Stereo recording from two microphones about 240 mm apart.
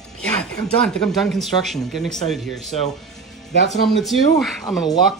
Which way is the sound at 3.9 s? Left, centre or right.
Centre.